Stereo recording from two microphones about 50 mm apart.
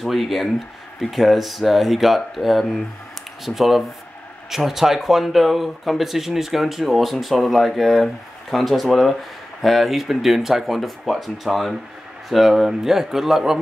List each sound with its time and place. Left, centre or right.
0.0 s speech: centre